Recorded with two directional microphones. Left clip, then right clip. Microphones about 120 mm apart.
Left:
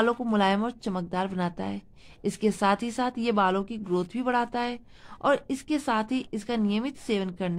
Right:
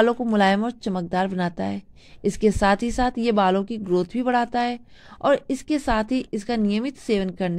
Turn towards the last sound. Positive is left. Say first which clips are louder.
# right 5 dB
turn(degrees=-35)  # may be behind; listen again after turning